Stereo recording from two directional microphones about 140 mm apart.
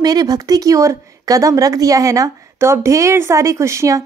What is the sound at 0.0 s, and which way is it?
A woman's voice, 30° right (ahead or behind).